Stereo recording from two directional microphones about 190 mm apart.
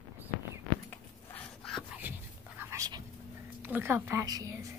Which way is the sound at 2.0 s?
10° right (ahead or behind).